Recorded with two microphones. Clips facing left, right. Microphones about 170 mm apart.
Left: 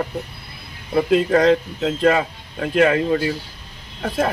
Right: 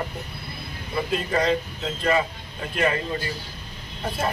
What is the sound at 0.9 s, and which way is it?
Speech, 90° left.